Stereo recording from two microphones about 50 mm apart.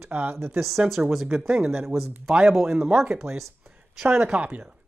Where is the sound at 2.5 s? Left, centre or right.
Centre.